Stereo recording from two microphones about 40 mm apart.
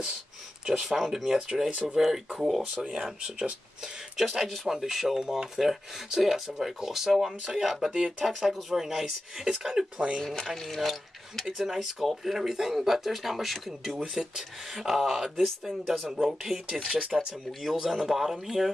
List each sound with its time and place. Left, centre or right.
0.7 s speech: centre
2.8 s speech: centre
4.2 s speech: centre
9.9 s speech: right
10.5 s mechanisms: centre
11.5 s speech: centre